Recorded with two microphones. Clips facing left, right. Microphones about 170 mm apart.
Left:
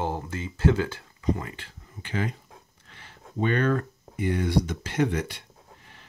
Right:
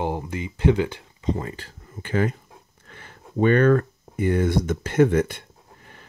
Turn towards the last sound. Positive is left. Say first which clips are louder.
# right 7 dB
turn(degrees=-50)  # may be behind; listen again after turning